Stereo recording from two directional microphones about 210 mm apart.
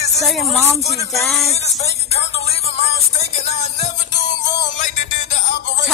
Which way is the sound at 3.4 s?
30° left (ahead or behind).